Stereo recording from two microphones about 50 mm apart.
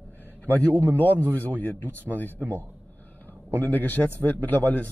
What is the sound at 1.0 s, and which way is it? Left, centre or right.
A man's voice, left.